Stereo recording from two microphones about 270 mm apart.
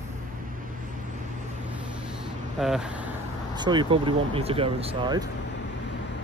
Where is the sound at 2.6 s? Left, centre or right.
Centre.